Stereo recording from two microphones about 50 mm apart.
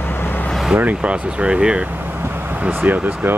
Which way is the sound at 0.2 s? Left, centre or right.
Left.